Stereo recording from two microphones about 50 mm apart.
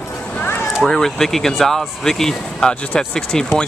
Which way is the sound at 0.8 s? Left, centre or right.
Centre.